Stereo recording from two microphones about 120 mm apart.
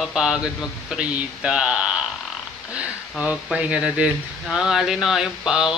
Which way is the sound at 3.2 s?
10° right (ahead or behind).